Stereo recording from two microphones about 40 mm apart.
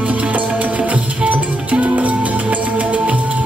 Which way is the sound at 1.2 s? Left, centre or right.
Right.